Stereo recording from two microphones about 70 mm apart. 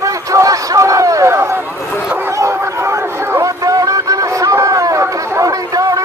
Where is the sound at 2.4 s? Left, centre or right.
Right.